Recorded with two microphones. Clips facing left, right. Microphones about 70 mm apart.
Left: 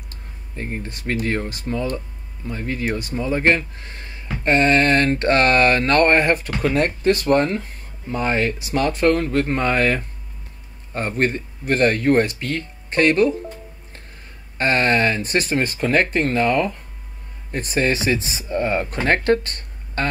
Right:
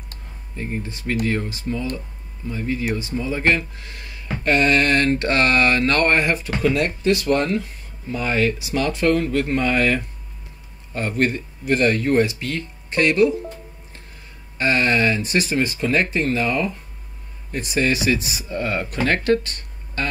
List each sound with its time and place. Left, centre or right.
0.6 s speech: left
14.6 s speech: left